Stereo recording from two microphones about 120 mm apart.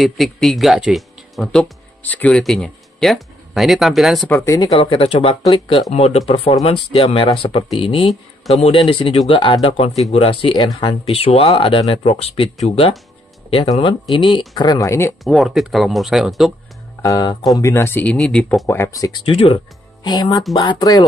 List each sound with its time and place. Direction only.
0.0 s speech: centre (ahead or behind)
2.0 s speech: 10° left (ahead or behind)
4.6 s speech: 50° left (ahead or behind)
8.5 s speech: 60° left (ahead or behind)
8.7 s speech: 45° left (ahead or behind)
10.8 s speech: 55° left (ahead or behind)
14.1 s speech: 40° left (ahead or behind); by 15.1 s 25° left (ahead or behind)
15.2 s speech: centre (ahead or behind)
17.0 s speech: 30° left (ahead or behind)
18.1 s speech: 5° left (ahead or behind)
18.7 s speech: 25° left (ahead or behind)
19.2 s speech: 50° left (ahead or behind)
20.0 s speech: 35° left (ahead or behind)